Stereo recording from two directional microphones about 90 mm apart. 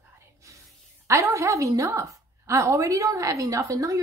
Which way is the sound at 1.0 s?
35° right (ahead or behind).